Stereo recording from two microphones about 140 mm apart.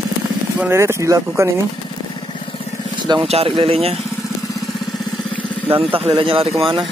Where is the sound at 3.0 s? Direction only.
30° right (ahead or behind).